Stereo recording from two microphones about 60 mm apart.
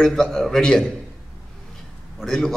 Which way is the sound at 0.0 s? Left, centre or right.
Centre.